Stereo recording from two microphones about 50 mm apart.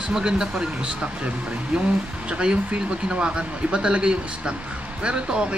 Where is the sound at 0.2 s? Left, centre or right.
Centre.